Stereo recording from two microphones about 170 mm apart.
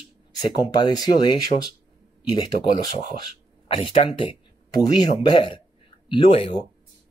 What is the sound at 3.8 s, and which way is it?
Speech, 35° left (ahead or behind).